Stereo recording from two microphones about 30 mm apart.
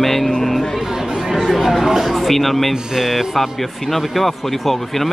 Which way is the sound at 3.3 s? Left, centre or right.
Centre.